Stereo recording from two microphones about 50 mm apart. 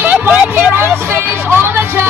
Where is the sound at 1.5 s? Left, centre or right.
Right.